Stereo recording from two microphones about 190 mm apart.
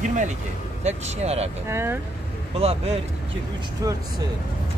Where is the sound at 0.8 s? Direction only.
35° right (ahead or behind).